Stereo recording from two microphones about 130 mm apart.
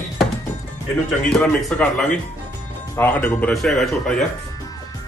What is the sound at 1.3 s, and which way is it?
Speech, 5° left (ahead or behind).